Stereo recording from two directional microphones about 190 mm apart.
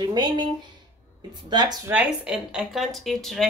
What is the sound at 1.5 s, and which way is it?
Speech, 20° right (ahead or behind).